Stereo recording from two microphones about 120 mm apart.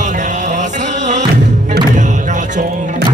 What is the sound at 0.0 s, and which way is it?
Music, 90° right.